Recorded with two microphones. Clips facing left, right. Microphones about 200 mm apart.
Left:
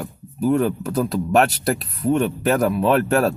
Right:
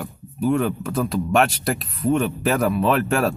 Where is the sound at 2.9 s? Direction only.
40° left (ahead or behind).